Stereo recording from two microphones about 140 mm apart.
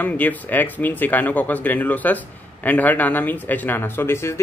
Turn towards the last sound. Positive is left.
turn(degrees=20)  # may be behind; listen again after turning